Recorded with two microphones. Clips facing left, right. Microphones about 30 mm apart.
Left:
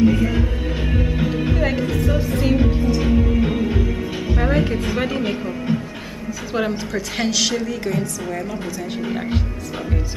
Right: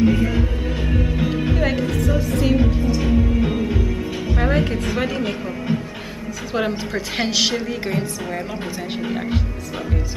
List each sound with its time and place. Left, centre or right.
0.0 s music: centre
2.0 s music: centre
4.4 s music: centre
6.5 s a woman's voice: centre; by 8.1 s right
9.0 s speech: centre